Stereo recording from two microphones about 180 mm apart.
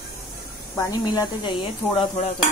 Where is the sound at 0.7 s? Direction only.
20° left (ahead or behind).